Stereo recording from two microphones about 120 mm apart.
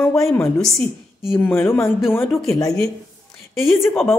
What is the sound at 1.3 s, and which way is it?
Speech, 20° left (ahead or behind).